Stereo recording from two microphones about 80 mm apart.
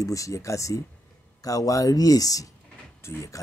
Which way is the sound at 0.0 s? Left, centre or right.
Left.